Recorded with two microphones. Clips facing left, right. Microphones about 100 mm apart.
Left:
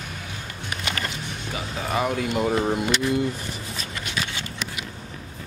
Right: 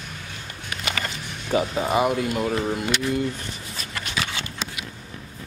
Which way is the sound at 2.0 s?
5° right (ahead or behind).